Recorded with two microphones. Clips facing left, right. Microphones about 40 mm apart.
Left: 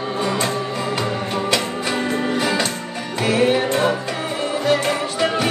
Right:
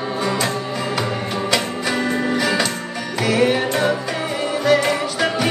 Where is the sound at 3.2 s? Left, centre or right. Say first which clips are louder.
Even; left.